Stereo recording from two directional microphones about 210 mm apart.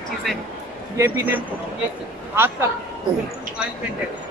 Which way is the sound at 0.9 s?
10° right (ahead or behind).